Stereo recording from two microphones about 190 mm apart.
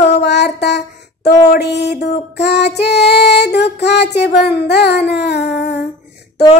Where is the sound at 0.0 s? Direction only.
60° left (ahead or behind).